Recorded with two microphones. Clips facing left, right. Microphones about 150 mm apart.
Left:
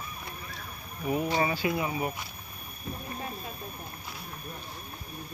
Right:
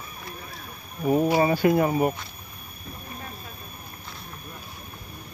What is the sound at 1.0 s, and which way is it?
Speech, 40° right (ahead or behind).